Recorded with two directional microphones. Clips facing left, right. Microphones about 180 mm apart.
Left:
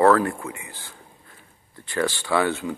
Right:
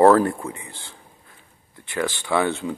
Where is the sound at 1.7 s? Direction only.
20° right (ahead or behind).